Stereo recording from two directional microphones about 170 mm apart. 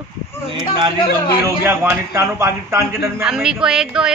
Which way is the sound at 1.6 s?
15° right (ahead or behind).